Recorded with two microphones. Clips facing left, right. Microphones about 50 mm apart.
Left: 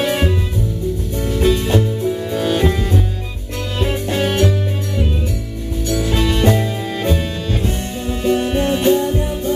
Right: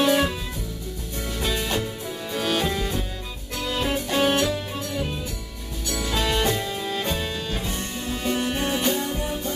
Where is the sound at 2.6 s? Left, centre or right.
Left.